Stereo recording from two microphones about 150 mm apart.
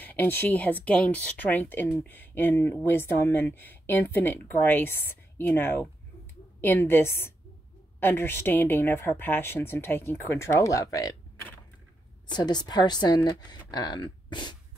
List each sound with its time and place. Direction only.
0.0 s speech: 10° left (ahead or behind)
12.3 s a woman's voice: 30° left (ahead or behind)